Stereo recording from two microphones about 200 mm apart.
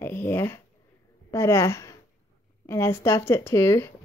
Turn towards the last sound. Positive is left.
turn(degrees=15)  # may be behind; listen again after turning